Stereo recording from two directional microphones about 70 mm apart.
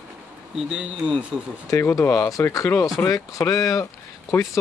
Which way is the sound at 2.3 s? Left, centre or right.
Left.